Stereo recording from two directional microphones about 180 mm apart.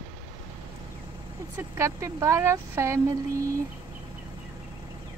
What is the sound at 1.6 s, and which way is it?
Speech, 15° right (ahead or behind).